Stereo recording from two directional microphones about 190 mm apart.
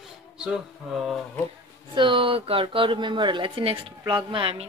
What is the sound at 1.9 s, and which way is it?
Speech, 25° right (ahead or behind).